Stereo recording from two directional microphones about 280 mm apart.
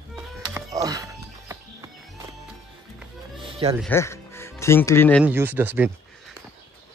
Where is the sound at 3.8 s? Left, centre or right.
Centre.